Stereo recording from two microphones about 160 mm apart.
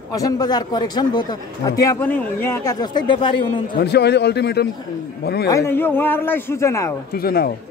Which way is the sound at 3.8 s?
90° left.